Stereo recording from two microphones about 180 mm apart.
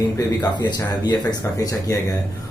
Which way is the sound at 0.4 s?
25° left (ahead or behind).